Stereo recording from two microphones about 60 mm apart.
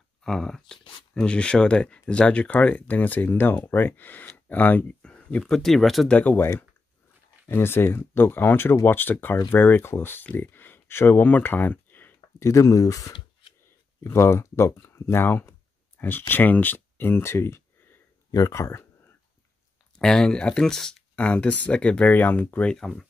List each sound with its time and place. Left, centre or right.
0.2 s speech: centre; by 4.9 s left
5.0 s speech: centre
6.0 s speech: left
7.4 s speech: left
12.4 s speech: left
14.0 s speech: left
18.3 s speech: left
20.0 s speech: centre
21.2 s speech: left